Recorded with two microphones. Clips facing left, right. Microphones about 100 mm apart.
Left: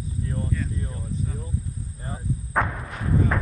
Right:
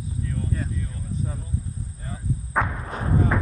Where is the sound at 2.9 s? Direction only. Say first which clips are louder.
Right 1 dB; 35° right (ahead or behind).